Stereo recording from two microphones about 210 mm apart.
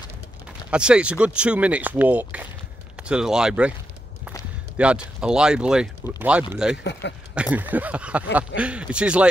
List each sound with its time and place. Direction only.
0.7 s speech: 5° right (ahead or behind)
4.7 s speech: 5° right (ahead or behind)
6.8 s speech: 55° left (ahead or behind)
7.5 s a sound: 10° right (ahead or behind)
8.5 s speech: 5° right (ahead or behind)